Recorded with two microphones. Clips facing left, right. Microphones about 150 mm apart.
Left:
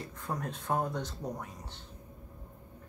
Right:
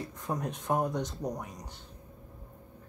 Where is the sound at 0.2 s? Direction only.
20° right (ahead or behind).